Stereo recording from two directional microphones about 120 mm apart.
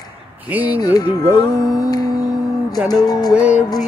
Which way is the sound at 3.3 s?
10° right (ahead or behind).